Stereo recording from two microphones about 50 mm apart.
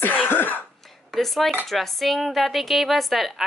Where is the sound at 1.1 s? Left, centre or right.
Centre.